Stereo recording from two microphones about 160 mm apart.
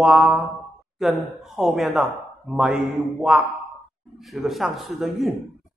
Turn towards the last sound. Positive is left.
turn(degrees=0)  # may be behind; listen again after turning